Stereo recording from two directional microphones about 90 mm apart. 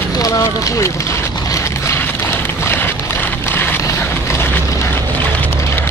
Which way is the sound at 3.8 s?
35° left (ahead or behind).